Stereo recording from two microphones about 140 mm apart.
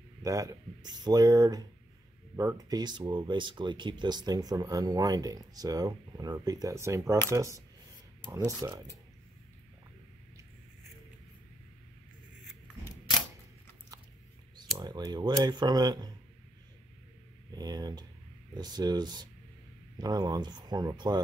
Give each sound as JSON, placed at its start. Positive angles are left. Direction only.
{"t": 0.2, "sound": "speech", "side_deg": -25}
{"t": 14.8, "sound": "speech", "side_deg": -30}
{"t": 17.6, "sound": "speech", "side_deg": -30}